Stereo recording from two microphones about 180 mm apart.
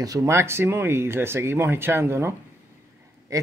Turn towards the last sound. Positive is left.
turn(degrees=-20)  # may be behind; listen again after turning